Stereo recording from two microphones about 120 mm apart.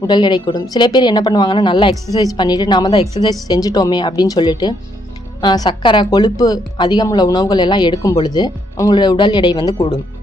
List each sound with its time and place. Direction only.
0.0 s a woman's voice: 40° left (ahead or behind)